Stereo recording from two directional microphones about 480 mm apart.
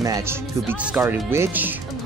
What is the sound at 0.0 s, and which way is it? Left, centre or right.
Speech, centre.